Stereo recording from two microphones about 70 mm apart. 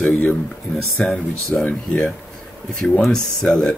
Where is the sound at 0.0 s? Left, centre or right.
Left.